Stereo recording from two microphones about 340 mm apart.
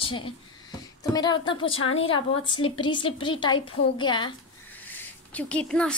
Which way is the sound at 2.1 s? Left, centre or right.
Centre.